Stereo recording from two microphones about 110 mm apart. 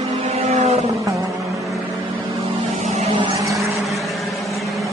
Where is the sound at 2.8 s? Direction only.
90° right.